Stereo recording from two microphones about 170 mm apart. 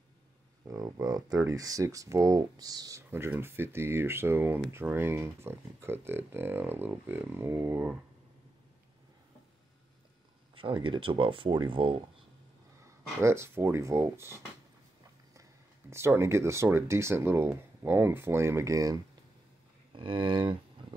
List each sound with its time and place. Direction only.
0.7 s speech: 20° right (ahead or behind)
10.5 s speech: 30° right (ahead or behind)
12.8 s speech: 15° right (ahead or behind)
15.9 s speech: 15° right (ahead or behind)